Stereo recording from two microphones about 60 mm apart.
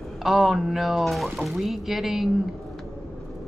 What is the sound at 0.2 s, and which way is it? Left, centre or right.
Speech, centre.